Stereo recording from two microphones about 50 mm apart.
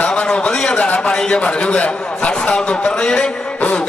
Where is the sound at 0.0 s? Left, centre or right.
Centre.